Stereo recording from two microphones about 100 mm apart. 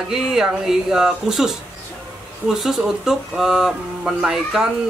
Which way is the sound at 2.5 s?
5° right (ahead or behind).